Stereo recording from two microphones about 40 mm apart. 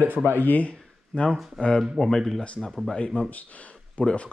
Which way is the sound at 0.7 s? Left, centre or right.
Left.